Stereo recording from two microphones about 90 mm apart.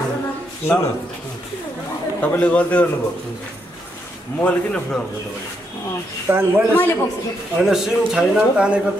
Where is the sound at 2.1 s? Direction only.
15° left (ahead or behind).